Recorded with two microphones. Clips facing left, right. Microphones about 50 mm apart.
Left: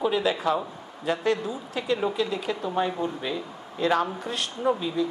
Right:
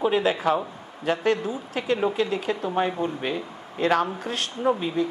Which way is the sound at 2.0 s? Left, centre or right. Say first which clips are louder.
Right 2 dB; right.